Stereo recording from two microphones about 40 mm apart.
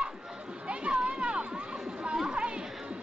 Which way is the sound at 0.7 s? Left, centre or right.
Right.